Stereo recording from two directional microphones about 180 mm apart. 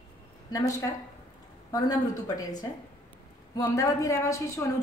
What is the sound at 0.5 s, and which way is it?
A woman's voice, 20° left (ahead or behind).